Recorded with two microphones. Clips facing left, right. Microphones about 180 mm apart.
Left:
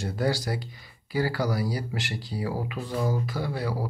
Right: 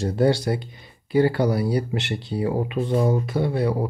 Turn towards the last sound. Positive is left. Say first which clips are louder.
# right 7 dB
turn(degrees=-25)  # may be behind; listen again after turning